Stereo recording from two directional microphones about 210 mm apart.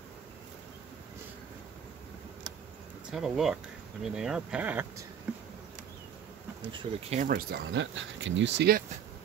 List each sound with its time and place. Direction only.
3.1 s speech: centre (ahead or behind)
6.7 s speech: 25° right (ahead or behind)
7.2 s speech: 45° right (ahead or behind)